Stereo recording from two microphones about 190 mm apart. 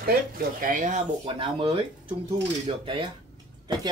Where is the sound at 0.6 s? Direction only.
45° right (ahead or behind).